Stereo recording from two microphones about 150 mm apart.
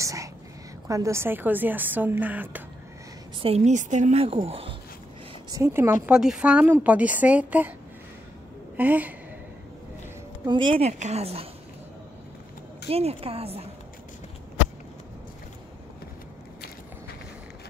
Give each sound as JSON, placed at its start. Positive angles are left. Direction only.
{"t": 0.0, "sound": "a sound", "side_deg": -20}
{"t": 0.8, "sound": "a woman's voice", "side_deg": -20}
{"t": 3.3, "sound": "a woman's voice", "side_deg": -40}
{"t": 5.5, "sound": "a woman's voice", "side_deg": -15}
{"t": 6.0, "sound": "a woman's voice", "side_deg": -5}
{"t": 8.7, "sound": "a woman's voice", "side_deg": -10}
{"t": 10.4, "sound": "speech", "side_deg": -30}
{"t": 12.8, "sound": "speech", "side_deg": -40}